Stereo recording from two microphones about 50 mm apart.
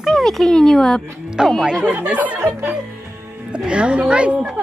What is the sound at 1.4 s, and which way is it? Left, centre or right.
Speech, centre.